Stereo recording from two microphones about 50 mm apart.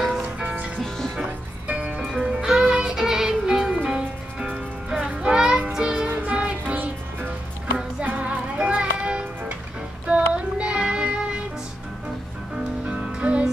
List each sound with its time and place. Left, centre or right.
0.4 s music: right
0.7 s music: centre
1.7 s music: right
8.3 s music: right
10.0 s child singing: right
12.8 s music: right